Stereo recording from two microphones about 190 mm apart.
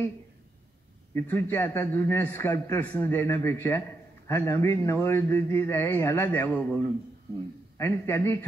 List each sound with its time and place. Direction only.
1.1 s a man's voice: 10° left (ahead or behind)